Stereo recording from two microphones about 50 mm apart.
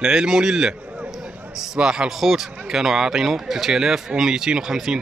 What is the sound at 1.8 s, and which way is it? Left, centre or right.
Speech, centre.